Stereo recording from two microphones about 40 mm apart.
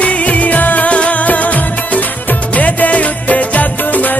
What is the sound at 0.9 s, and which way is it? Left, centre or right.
Music, left.